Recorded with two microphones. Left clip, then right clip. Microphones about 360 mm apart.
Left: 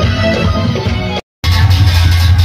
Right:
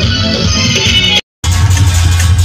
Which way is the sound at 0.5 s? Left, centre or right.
Centre.